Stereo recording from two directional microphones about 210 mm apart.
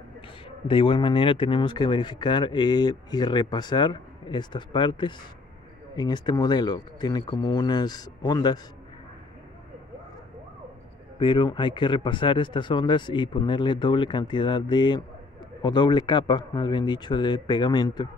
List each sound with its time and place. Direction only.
0.7 s speech: 25° left (ahead or behind)
11.1 s speech: 25° left (ahead or behind)